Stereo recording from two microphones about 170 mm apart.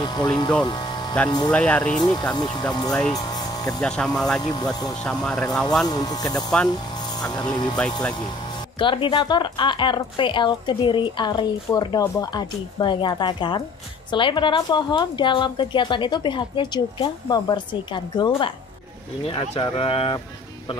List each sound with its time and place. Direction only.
0.0 s speech: 25° left (ahead or behind)
0.7 s a sound: 25° left (ahead or behind)
1.5 s speech: 5° left (ahead or behind)
2.7 s a woman's voice: 25° left (ahead or behind)
3.1 s a sound: 20° left (ahead or behind)
3.8 s speech: 5° left (ahead or behind)
4.4 s a woman's voice: 25° left (ahead or behind)
5.0 s speech: 5° left (ahead or behind)
5.9 s a woman's voice: 25° left (ahead or behind)
7.7 s speech: 5° left (ahead or behind)
8.7 s a woman's voice: 30° left (ahead or behind)